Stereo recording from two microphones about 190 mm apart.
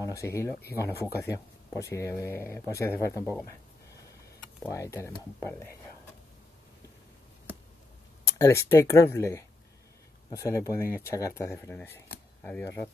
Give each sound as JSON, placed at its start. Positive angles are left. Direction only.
{"t": 0.0, "sound": "speech", "side_deg": 15}
{"t": 4.6, "sound": "speech", "side_deg": 15}
{"t": 8.4, "sound": "speech", "side_deg": 15}